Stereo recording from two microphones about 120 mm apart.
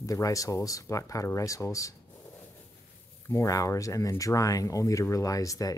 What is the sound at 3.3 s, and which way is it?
Speech, 25° left (ahead or behind).